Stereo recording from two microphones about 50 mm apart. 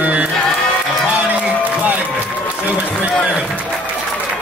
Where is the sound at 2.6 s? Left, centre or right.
Right.